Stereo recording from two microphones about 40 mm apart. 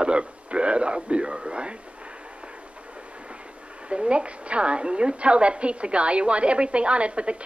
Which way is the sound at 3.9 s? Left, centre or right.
Right.